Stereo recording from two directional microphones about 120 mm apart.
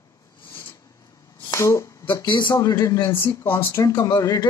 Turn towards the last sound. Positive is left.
turn(degrees=30)  # may be behind; listen again after turning